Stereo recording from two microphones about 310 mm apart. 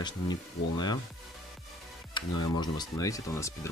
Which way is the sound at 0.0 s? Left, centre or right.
Centre.